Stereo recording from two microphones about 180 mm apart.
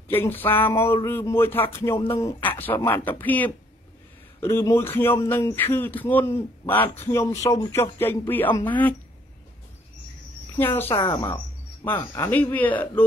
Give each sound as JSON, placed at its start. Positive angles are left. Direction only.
{"t": 0.1, "sound": "a man's voice", "side_deg": 10}
{"t": 10.6, "sound": "a man's voice", "side_deg": 10}
{"t": 10.9, "sound": "speech", "side_deg": 30}
{"t": 11.8, "sound": "a man's voice", "side_deg": 10}